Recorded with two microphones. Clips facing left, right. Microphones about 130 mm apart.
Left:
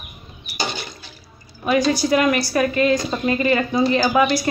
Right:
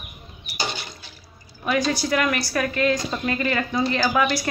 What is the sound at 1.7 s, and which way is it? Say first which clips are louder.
A woman's voice: left 5 dB; 5° left (ahead or behind).